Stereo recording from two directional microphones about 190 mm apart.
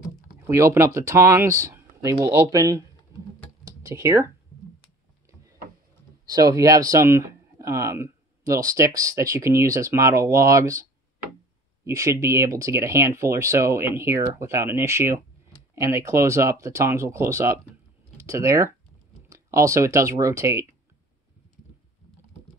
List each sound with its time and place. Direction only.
0.5 s speech: 15° right (ahead or behind)
3.1 s a sound: 15° right (ahead or behind)
3.6 s typing: 15° right (ahead or behind)
6.2 s speech: 20° right (ahead or behind)